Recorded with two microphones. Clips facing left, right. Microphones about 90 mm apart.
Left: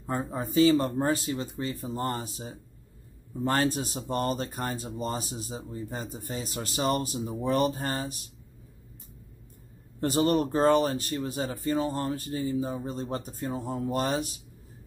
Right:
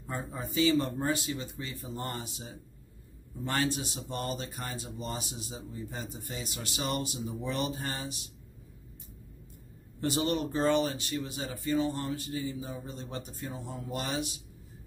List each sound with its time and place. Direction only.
0.0 s speech: 40° left (ahead or behind)
9.9 s speech: 40° left (ahead or behind)